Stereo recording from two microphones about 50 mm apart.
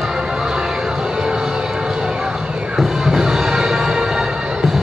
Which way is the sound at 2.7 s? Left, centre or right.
Centre.